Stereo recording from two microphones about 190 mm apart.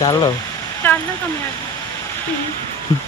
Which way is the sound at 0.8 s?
10° left (ahead or behind).